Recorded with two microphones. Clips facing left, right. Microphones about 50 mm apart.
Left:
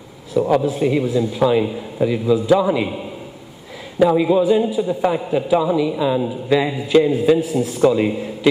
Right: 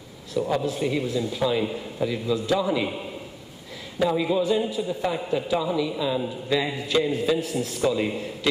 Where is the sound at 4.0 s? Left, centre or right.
Centre.